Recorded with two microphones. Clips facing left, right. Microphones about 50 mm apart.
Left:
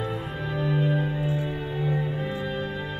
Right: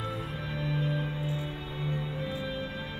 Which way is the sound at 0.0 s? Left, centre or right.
Left.